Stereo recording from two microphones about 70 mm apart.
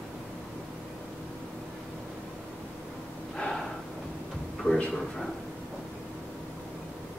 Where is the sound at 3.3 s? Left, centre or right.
Centre.